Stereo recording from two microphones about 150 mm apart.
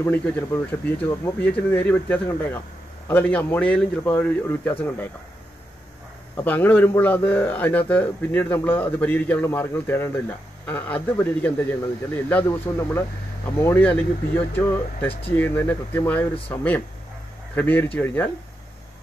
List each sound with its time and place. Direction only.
0.0 s a man's voice: 15° left (ahead or behind)
6.3 s a man's voice: 15° left (ahead or behind)